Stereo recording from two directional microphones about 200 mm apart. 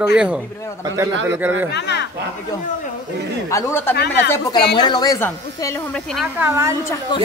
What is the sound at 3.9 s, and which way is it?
Speech, 55° left (ahead or behind).